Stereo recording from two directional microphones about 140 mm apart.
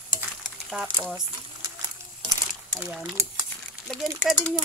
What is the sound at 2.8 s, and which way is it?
Speech, 10° right (ahead or behind).